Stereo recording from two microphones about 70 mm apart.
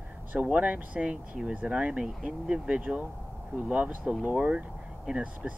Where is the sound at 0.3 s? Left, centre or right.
Right.